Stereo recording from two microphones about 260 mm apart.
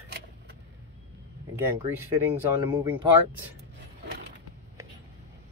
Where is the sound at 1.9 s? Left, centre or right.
Centre.